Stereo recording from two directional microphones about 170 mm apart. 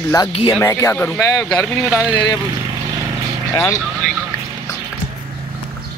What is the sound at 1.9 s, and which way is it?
Speech, 5° right (ahead or behind).